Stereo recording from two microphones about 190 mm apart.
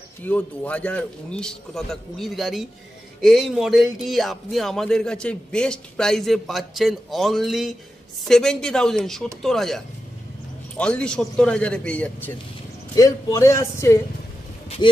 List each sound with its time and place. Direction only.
0.2 s speech: 10° left (ahead or behind); by 15.0 s 25° left (ahead or behind)